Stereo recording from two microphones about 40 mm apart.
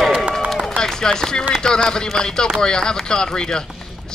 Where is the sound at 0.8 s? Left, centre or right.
Centre.